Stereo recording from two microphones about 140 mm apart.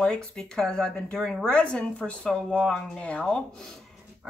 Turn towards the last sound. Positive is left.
turn(degrees=0)  # may be behind; listen again after turning